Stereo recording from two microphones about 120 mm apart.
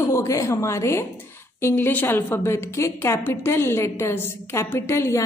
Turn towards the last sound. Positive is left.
turn(degrees=25)  # may be behind; listen again after turning